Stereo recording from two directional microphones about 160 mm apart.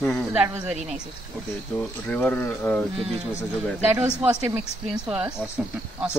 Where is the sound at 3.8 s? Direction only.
15° right (ahead or behind).